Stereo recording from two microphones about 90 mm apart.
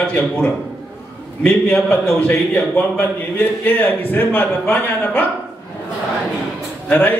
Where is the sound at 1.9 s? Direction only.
20° left (ahead or behind).